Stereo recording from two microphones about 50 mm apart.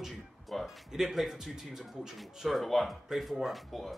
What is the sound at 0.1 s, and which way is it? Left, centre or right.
A man's voice, centre.